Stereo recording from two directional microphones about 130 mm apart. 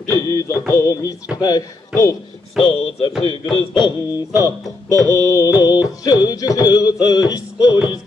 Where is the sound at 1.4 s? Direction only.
30° left (ahead or behind).